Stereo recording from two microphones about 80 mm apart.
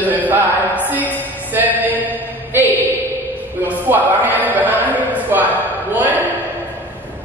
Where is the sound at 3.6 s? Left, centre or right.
Right.